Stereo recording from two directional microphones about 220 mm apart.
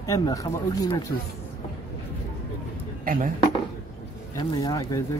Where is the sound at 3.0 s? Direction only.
40° right (ahead or behind).